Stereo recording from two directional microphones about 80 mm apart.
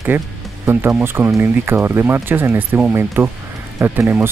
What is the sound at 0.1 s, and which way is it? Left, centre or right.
Speech, right.